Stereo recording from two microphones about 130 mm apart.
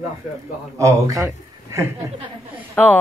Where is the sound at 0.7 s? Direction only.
25° right (ahead or behind).